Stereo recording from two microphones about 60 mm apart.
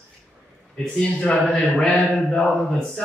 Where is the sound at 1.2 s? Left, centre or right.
Centre.